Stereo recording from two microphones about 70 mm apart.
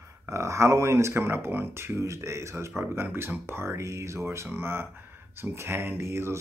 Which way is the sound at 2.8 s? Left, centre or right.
Right.